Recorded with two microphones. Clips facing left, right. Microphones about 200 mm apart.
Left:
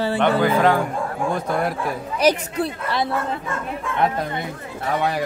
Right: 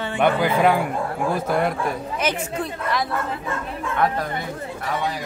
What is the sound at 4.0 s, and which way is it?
Speech, 25° left (ahead or behind).